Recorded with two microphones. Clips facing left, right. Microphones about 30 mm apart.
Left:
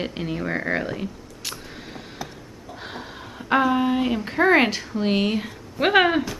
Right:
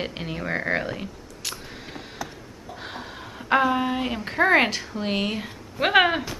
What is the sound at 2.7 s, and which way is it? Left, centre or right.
A woman's voice, centre.